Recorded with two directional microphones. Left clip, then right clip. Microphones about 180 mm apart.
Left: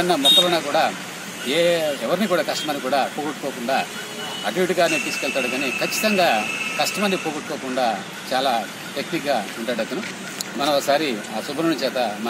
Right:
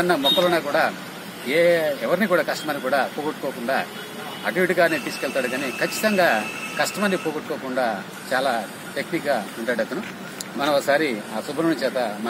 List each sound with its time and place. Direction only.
0.0 s speech: 15° right (ahead or behind)
4.5 s speech: 10° right (ahead or behind)